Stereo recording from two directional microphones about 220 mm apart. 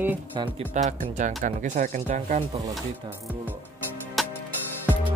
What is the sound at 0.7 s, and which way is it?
Speech, 30° right (ahead or behind).